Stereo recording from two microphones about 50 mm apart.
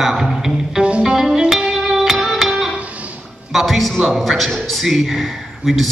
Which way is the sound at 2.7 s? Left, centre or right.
Right.